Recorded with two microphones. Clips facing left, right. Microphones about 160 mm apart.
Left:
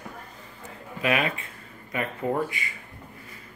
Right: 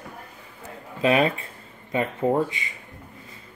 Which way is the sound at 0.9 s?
30° right (ahead or behind).